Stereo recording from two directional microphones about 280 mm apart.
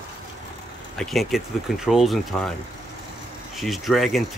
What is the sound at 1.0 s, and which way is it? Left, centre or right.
Speech, centre.